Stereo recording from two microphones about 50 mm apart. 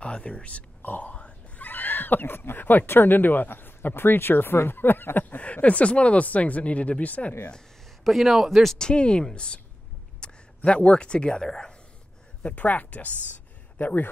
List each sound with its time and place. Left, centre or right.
0.0 s grunt: left
1.7 s speech: left
5.4 s speech: left
8.0 s a man's voice: centre
8.7 s speech: centre
12.4 s speech: left